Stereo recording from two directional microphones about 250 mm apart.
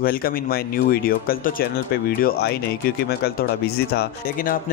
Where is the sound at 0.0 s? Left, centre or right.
Left.